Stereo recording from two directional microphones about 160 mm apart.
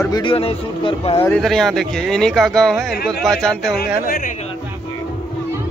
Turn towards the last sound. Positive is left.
turn(degrees=65)  # may be behind; listen again after turning